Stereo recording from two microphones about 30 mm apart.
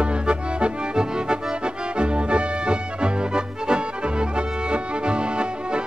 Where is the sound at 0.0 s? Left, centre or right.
Right.